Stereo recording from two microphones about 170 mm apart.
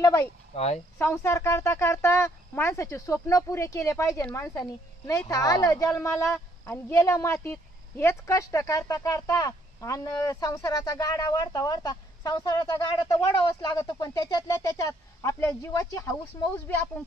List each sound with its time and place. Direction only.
0.0 s speech: 15° left (ahead or behind)
0.5 s speech: 35° left (ahead or behind)
0.9 s speech: 15° left (ahead or behind)